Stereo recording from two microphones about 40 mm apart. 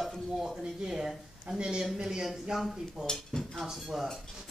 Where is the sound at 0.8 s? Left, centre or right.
Centre.